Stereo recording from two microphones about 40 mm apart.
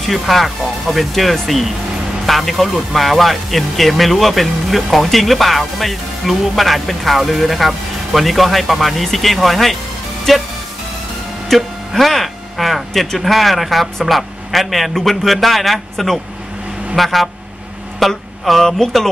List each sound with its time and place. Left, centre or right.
0.0 s speech: centre
11.5 s speech: centre